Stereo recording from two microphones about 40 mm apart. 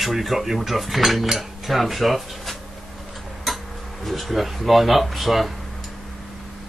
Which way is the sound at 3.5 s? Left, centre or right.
Centre.